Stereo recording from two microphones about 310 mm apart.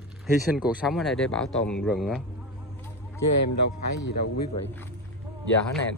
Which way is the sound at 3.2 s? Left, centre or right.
Left.